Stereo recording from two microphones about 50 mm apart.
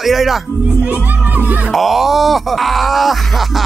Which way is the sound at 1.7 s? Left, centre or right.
Centre.